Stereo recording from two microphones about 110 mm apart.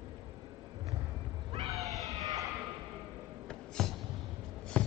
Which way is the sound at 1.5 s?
65° right (ahead or behind).